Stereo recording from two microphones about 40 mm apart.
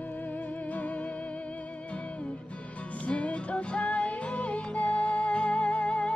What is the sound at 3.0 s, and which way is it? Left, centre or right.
Music, left.